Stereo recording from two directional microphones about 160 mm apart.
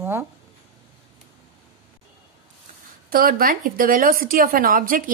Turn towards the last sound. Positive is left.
turn(degrees=-60)  # may be behind; listen again after turning